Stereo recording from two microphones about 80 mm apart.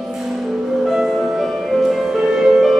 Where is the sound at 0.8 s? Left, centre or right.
Centre.